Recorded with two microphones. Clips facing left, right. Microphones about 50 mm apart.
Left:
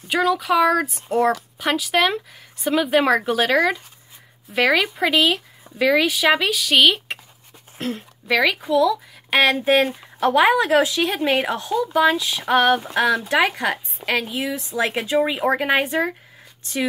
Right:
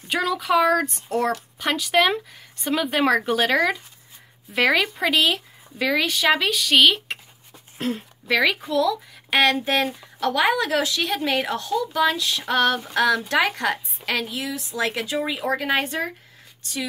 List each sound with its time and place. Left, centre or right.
0.1 s a woman's voice: centre